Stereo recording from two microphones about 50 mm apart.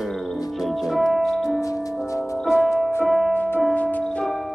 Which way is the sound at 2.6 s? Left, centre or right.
Centre.